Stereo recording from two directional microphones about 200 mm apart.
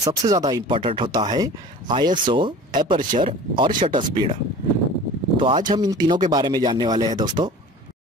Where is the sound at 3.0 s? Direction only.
45° right (ahead or behind).